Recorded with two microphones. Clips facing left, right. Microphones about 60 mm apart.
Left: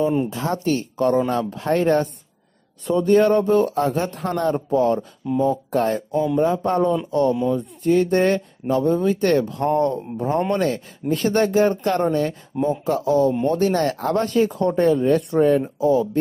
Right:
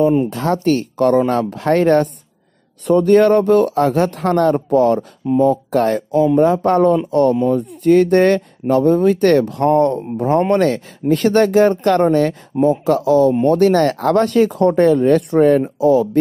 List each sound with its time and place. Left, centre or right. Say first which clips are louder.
0.3 s speech: right 6 dB; right
1.6 s speech: right 5 dB; right
13.5 s speech: right 7 dB; right
15.8 s speech: right 5 dB; right